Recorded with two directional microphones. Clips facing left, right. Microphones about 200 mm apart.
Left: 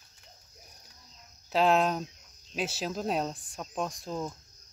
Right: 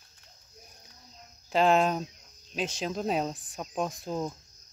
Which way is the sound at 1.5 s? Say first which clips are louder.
Right 1 dB; centre (ahead or behind).